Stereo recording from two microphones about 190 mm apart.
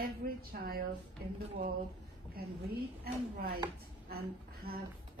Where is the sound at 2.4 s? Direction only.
50° right (ahead or behind).